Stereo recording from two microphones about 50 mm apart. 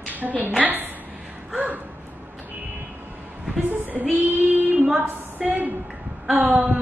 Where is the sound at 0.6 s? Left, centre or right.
Right.